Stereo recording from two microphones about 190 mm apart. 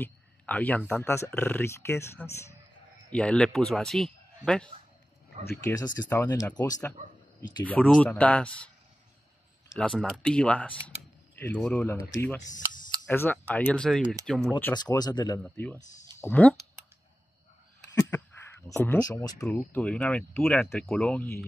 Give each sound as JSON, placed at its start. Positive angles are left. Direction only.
{"t": 0.0, "sound": "speech", "side_deg": 10}
{"t": 5.4, "sound": "speech", "side_deg": 15}
{"t": 14.7, "sound": "speech", "side_deg": 20}
{"t": 15.4, "sound": "speech", "side_deg": 10}
{"t": 18.7, "sound": "speech", "side_deg": 15}
{"t": 19.4, "sound": "speech", "side_deg": 10}